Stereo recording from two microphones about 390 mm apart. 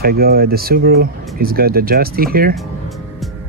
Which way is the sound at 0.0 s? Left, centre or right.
Right.